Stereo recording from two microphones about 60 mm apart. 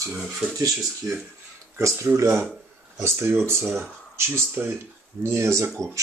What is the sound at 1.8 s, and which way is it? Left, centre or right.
Speech, right.